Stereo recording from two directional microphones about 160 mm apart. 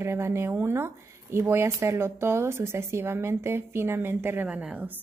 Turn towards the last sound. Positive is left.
turn(degrees=-10)  # may be behind; listen again after turning